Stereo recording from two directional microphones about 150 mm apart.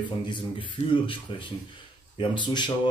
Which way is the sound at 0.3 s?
35° left (ahead or behind).